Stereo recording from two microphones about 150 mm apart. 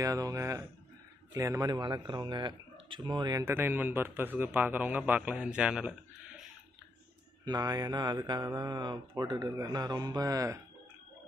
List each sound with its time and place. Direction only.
0.0 s speech: 25° right (ahead or behind); by 6.5 s 5° right (ahead or behind)
7.4 s speech: 25° right (ahead or behind)